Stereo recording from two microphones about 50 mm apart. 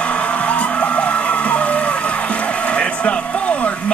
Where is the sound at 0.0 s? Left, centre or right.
Left.